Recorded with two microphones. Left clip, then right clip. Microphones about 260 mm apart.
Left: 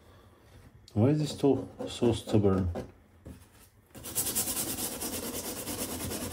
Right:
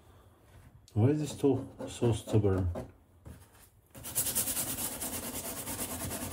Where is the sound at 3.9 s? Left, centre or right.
Centre.